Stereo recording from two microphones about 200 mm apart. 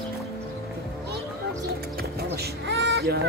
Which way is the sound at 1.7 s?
50° right (ahead or behind).